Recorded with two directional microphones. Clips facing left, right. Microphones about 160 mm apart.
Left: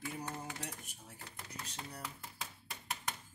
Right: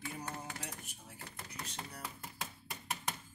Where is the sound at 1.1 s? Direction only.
5° right (ahead or behind).